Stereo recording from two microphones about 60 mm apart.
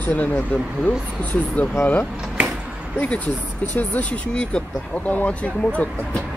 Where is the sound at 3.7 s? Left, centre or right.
Left.